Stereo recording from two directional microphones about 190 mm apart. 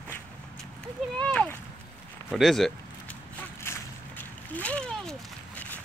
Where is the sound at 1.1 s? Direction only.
5° left (ahead or behind).